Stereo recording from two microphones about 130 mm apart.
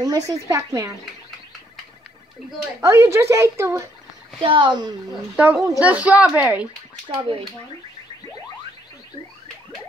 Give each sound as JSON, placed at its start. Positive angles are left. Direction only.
{"t": 0.0, "sound": "a woman's voice", "side_deg": -25}
{"t": 2.8, "sound": "a woman's voice", "side_deg": -20}
{"t": 4.4, "sound": "speech", "side_deg": -40}
{"t": 5.3, "sound": "a woman's voice", "side_deg": -10}
{"t": 7.1, "sound": "speech", "side_deg": -40}